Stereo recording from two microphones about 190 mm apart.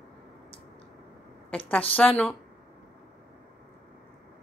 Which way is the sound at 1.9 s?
5° left (ahead or behind).